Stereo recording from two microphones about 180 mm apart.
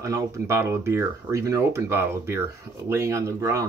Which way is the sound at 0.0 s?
15° right (ahead or behind).